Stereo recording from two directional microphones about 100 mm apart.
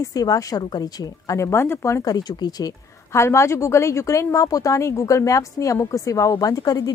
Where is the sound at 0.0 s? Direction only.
40° left (ahead or behind).